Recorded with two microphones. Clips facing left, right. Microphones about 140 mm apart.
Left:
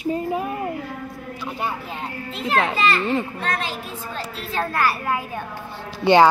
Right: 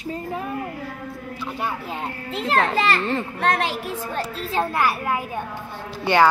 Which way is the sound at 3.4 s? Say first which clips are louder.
Right 5 dB; 75° right (ahead or behind).